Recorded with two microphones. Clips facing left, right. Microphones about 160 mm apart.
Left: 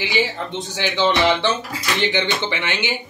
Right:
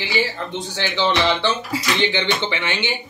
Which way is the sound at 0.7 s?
15° left (ahead or behind).